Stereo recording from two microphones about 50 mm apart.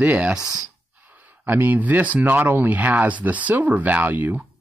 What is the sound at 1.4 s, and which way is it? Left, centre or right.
Speech, right.